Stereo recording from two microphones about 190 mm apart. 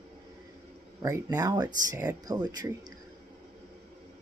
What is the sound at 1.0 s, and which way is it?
Speech, 15° right (ahead or behind).